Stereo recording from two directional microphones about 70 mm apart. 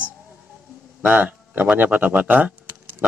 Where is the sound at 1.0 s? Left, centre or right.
Right.